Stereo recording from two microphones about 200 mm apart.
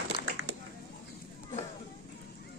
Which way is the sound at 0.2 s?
80° right.